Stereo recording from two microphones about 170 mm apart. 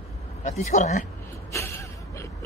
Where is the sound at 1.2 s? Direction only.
15° left (ahead or behind).